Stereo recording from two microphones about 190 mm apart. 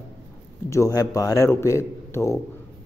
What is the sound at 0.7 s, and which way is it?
Speech, 15° left (ahead or behind).